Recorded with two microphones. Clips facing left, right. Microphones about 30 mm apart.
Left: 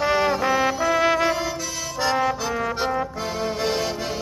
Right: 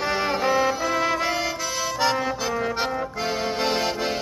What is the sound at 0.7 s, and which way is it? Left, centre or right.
Brass instrument, centre.